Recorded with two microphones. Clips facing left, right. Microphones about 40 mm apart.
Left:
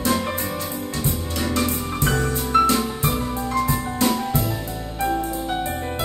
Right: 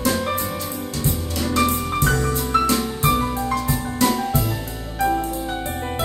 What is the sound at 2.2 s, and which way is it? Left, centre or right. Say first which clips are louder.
Music: left 1 dB; left.